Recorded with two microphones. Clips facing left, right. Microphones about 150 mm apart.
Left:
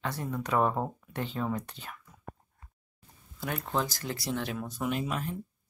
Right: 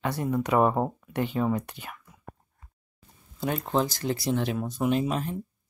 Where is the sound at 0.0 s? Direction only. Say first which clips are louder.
Right 7 dB; 10° right (ahead or behind).